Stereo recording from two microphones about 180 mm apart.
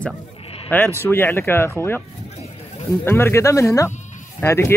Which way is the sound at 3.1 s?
15° left (ahead or behind).